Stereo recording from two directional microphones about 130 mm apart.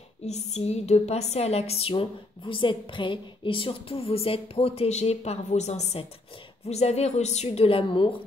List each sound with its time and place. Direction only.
0.2 s a woman's voice: 60° left (ahead or behind); by 8.2 s 40° left (ahead or behind)